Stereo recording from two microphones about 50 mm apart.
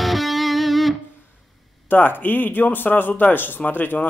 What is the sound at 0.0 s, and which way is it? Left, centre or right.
Music, centre.